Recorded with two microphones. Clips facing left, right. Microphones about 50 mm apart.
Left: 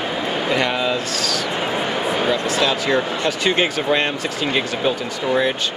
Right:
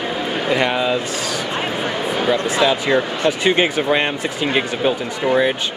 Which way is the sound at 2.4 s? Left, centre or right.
Centre.